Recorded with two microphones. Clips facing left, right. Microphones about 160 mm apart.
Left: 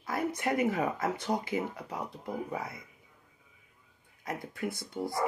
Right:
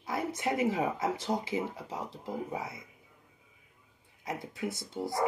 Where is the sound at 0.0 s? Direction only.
25° right (ahead or behind).